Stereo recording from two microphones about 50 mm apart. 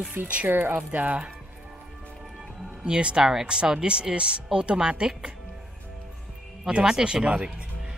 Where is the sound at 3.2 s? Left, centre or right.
Centre.